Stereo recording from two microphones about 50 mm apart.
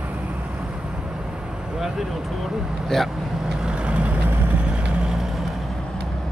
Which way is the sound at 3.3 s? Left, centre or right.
Centre.